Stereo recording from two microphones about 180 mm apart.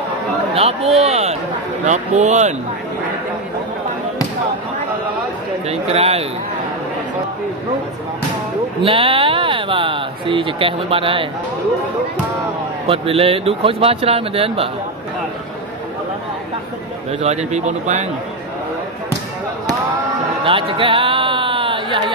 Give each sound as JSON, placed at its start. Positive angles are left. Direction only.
{"t": 0.6, "sound": "a man's voice", "side_deg": -35}
{"t": 5.7, "sound": "a man's voice", "side_deg": -35}
{"t": 8.8, "sound": "speech", "side_deg": -30}
{"t": 12.8, "sound": "a man's voice", "side_deg": -35}
{"t": 17.2, "sound": "a man's voice", "side_deg": -40}
{"t": 20.4, "sound": "music", "side_deg": -30}